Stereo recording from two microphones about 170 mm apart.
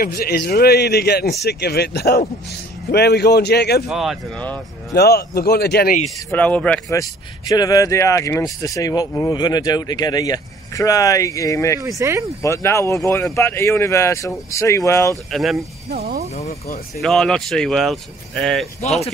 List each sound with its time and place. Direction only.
0.0 s a man's voice: 65° left (ahead or behind)
3.9 s speech: centre (ahead or behind)
4.9 s a man's voice: 70° left (ahead or behind)
6.3 s speech: 10° left (ahead or behind)
6.9 s speech: 20° left (ahead or behind)
11.8 s speech: 20° right (ahead or behind)
12.4 s speech: 15° left (ahead or behind)
15.3 s speech: centre (ahead or behind)
15.9 s speech: 60° right (ahead or behind)
17.0 s speech: centre (ahead or behind)